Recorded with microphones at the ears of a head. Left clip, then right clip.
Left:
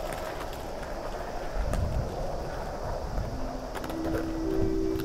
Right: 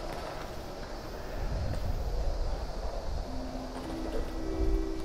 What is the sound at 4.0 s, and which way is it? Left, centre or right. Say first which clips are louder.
Vehicle: left 9 dB; left.